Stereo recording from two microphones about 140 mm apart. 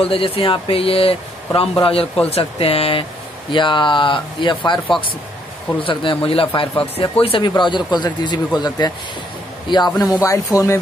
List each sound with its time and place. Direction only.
0.0 s speech: 40° left (ahead or behind)
5.8 s speech: 40° left (ahead or behind); by 10.8 s 25° left (ahead or behind)